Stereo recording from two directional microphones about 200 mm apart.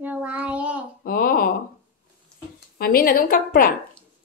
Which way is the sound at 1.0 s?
45° left (ahead or behind).